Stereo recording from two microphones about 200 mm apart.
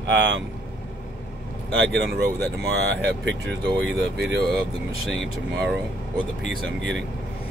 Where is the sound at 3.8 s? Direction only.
60° right (ahead or behind).